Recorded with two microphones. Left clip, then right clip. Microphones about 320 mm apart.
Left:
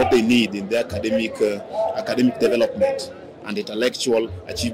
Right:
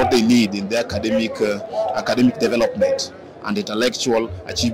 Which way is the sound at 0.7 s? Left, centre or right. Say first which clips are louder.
Right 1 dB; right.